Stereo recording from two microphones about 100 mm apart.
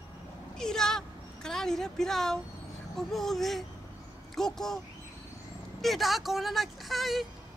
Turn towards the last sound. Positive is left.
turn(degrees=0)  # may be behind; listen again after turning